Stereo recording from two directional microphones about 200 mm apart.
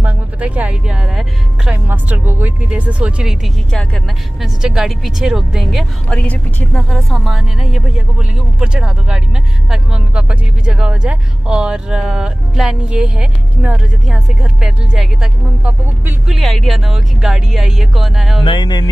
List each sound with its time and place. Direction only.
0.0 s speech: 5° right (ahead or behind)
18.4 s music: 25° left (ahead or behind)